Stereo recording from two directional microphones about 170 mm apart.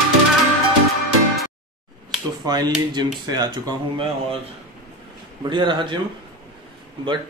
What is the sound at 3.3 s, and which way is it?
Speech, 25° right (ahead or behind).